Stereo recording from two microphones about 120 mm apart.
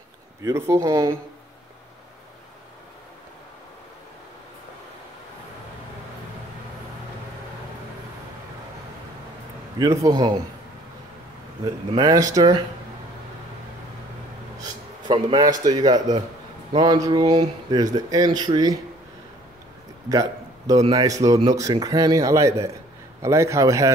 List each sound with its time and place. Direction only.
0.4 s a man's voice: 25° right (ahead or behind)
9.8 s speech: 30° right (ahead or behind)
12.0 s a man's voice: 30° right (ahead or behind)
14.6 s a sound: 45° right (ahead or behind)
15.3 s speech: 30° right (ahead or behind)
20.1 s a sound: 30° right (ahead or behind)
20.9 s a man's voice: 30° right (ahead or behind)